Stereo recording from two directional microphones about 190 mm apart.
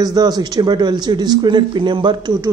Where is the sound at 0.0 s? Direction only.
20° right (ahead or behind).